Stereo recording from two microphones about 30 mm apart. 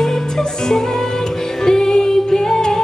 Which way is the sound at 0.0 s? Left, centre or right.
Centre.